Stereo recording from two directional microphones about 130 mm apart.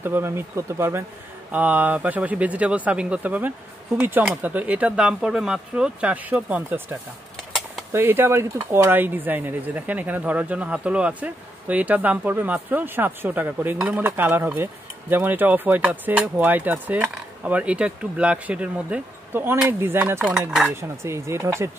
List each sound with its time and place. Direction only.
0.0 s speech: 15° right (ahead or behind)
20.3 s speech: 5° right (ahead or behind)
20.7 s speech: 20° right (ahead or behind)